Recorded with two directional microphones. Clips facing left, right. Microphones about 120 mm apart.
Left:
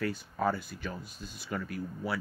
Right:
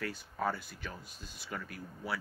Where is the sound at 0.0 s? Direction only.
10° left (ahead or behind).